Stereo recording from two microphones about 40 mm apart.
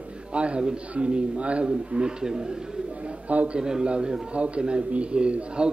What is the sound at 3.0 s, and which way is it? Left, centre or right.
Speech, right.